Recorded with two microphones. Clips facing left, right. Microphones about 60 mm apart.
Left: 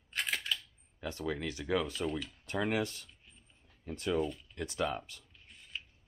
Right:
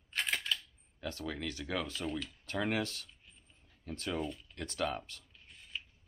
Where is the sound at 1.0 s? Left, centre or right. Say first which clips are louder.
Left 3 dB; centre.